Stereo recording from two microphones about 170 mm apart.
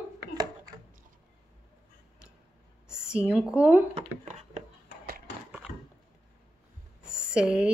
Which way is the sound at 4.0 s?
40° right (ahead or behind).